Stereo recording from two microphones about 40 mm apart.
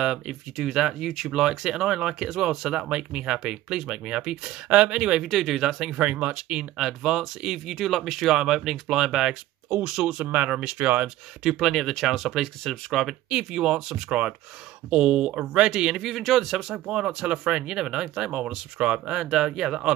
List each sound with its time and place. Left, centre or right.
0.6 s speech: centre; by 5.2 s right
5.3 s speech: centre
5.9 s speech: right
6.8 s speech: centre
8.4 s speech: centre
10.1 s speech: right
10.5 s speech: right
11.5 s speech: centre
13.3 s speech: centre
16.0 s speech: centre
16.8 s speech: centre